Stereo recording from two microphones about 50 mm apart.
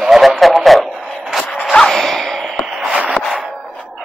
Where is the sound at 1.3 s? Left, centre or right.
Centre.